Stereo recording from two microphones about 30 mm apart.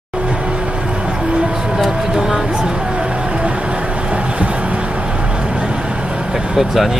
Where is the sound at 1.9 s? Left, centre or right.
Centre.